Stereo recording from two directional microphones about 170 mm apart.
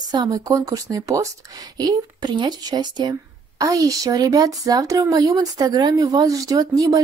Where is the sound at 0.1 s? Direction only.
20° right (ahead or behind).